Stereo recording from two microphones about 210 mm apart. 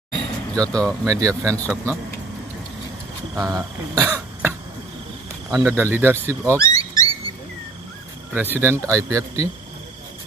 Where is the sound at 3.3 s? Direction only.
15° right (ahead or behind).